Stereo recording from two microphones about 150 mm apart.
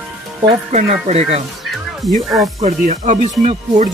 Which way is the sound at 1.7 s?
Centre (ahead or behind).